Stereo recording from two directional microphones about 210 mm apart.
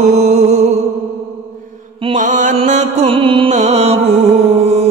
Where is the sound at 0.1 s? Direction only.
30° right (ahead or behind).